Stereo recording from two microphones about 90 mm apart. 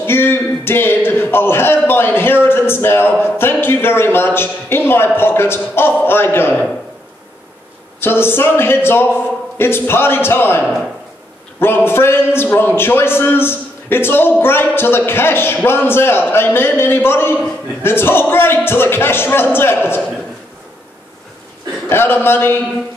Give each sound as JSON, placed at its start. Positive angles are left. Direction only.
{"t": 0.0, "sound": "speech", "side_deg": 25}
{"t": 8.0, "sound": "speech", "side_deg": 25}
{"t": 21.8, "sound": "speech", "side_deg": 25}